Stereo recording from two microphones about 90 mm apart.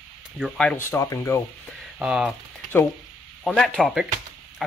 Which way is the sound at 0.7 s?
35° left (ahead or behind).